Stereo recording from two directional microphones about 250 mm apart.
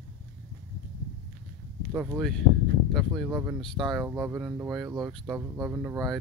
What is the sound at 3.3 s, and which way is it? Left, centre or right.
Speech, centre.